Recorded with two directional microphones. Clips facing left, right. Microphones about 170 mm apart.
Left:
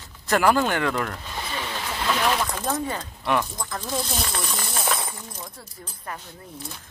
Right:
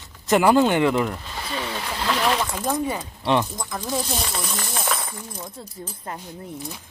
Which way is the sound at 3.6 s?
10° right (ahead or behind).